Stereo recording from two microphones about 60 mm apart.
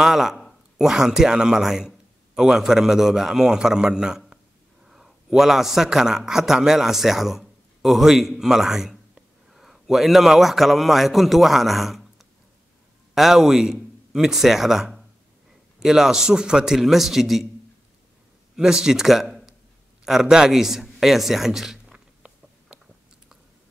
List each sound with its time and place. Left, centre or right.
0.0 s a man's voice: centre
13.1 s a man's voice: centre
18.6 s a man's voice: centre
21.9 s a sound: centre